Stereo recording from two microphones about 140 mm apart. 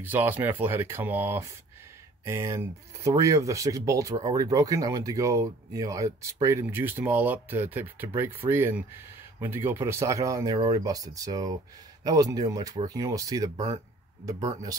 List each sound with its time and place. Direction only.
0.0 s speech: 15° right (ahead or behind)